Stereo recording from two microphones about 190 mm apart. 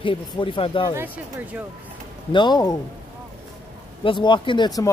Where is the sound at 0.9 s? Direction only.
10° right (ahead or behind).